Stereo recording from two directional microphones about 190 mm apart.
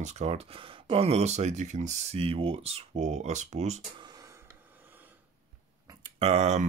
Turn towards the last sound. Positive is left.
turn(degrees=-35)  # may be behind; listen again after turning